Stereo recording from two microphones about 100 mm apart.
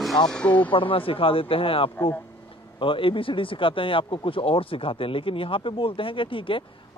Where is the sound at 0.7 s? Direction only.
60° left (ahead or behind).